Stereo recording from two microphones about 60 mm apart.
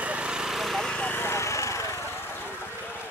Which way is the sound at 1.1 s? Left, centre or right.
Left.